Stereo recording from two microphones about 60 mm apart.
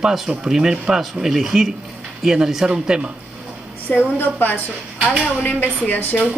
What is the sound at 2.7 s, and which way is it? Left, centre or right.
Speech, centre.